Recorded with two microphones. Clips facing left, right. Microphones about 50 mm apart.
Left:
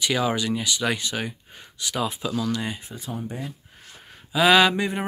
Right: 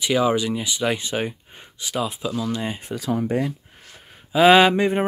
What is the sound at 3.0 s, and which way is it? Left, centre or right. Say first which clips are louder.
Speech: right 10 dB; right.